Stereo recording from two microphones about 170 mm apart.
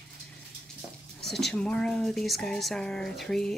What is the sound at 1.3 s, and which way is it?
A woman's voice, centre (ahead or behind).